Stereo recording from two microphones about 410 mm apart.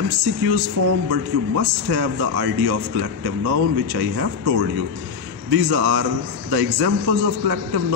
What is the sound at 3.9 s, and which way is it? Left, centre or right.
Speech, right.